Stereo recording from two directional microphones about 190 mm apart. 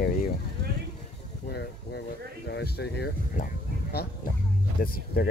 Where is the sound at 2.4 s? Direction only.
60° left (ahead or behind).